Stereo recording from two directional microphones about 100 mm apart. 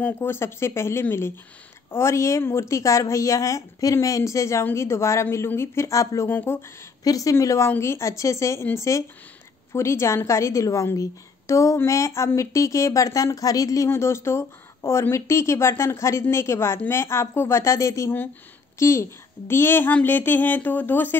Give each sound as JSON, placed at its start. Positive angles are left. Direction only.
{"t": 0.0, "sound": "a woman's voice", "side_deg": 25}
{"t": 7.0, "sound": "a woman's voice", "side_deg": 35}